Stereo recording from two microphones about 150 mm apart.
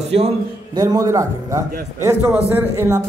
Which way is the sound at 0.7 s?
25° right (ahead or behind).